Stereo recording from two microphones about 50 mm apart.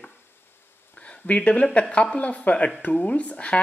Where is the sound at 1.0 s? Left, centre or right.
Left.